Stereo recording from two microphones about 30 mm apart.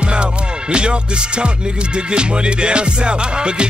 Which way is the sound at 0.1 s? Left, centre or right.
Right.